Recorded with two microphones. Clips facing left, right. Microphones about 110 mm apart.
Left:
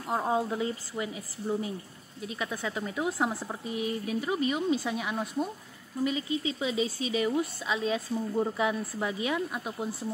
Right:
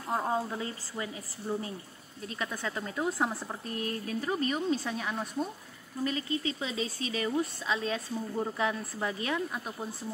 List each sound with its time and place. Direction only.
0.0 s speech: 10° left (ahead or behind)